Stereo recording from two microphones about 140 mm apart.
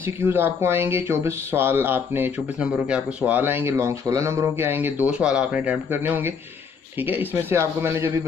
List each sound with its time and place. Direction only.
0.2 s speech: 15° right (ahead or behind)